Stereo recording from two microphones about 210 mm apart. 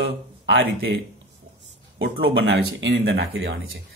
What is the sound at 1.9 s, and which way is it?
A man's voice, 50° right (ahead or behind).